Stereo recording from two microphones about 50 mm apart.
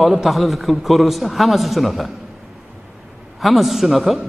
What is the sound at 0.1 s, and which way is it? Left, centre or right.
A man's voice, centre.